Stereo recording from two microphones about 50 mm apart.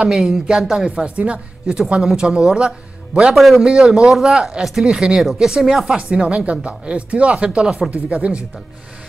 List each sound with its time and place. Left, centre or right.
0.1 s a woman's voice: centre
3.3 s a man's voice: centre
3.6 s a woman's voice: centre
5.2 s a woman's voice: centre
5.9 s speech: centre